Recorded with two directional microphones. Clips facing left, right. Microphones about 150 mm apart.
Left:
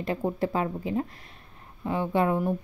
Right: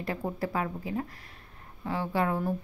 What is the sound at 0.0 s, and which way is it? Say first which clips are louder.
A woman's voice: left 5 dB; 20° left (ahead or behind).